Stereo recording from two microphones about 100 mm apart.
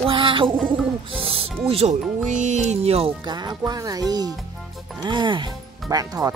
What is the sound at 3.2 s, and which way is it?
Speech, 45° right (ahead or behind).